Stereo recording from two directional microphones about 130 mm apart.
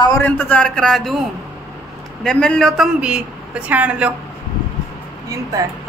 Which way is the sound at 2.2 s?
5° left (ahead or behind).